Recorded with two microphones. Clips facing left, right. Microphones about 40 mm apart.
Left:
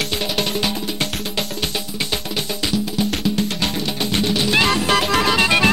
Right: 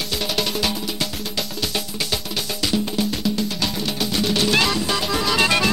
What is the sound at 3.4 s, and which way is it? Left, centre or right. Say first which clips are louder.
Music: left 3 dB; left.